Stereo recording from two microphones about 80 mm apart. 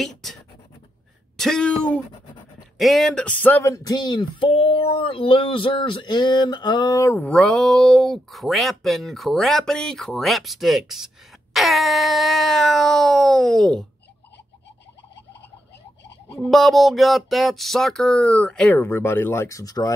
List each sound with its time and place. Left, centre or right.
0.0 s scratch: centre
1.3 s speech: centre
3.3 s speech: left
3.6 s speech: left
5.1 s a sound: left
7.2 s speech: centre
16.3 s speech: centre
18.7 s speech: left